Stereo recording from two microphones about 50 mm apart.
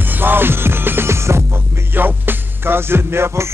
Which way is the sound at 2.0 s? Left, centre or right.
Right.